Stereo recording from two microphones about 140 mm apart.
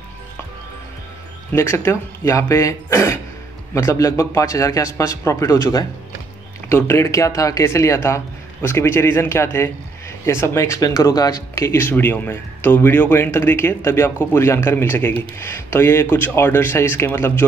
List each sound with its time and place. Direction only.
1.5 s a man's voice: 20° left (ahead or behind)